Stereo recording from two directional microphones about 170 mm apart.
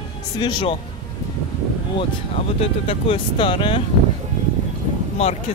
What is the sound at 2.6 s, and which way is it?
Speech, 30° left (ahead or behind).